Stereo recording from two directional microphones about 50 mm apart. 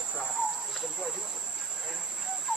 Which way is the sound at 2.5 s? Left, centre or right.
Centre.